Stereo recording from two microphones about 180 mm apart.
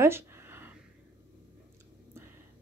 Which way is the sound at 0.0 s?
15° right (ahead or behind).